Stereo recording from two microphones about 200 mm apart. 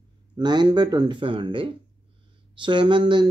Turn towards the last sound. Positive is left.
turn(degrees=-25)  # may be behind; listen again after turning